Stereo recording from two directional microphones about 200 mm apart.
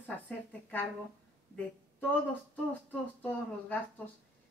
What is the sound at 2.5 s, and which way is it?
Speech, 10° left (ahead or behind).